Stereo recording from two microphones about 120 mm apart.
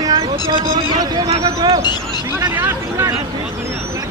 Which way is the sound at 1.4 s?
35° right (ahead or behind).